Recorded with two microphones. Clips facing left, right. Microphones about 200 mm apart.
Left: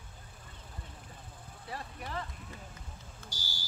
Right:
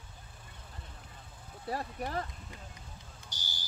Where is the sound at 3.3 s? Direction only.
20° right (ahead or behind).